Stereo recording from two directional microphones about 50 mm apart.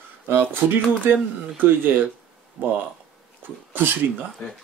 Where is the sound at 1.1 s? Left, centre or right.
Right.